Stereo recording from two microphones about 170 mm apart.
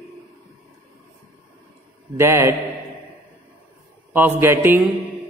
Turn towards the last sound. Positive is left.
turn(degrees=-15)  # may be behind; listen again after turning